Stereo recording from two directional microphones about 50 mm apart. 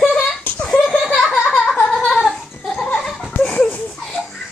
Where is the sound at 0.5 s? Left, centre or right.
Centre.